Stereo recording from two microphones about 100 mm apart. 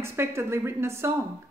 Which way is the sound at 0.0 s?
25° right (ahead or behind).